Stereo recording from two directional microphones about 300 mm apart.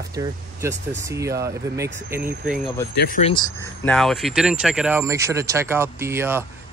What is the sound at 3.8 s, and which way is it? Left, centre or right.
Speech, centre.